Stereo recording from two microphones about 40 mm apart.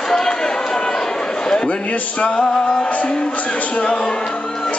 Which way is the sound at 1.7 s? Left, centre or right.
Left.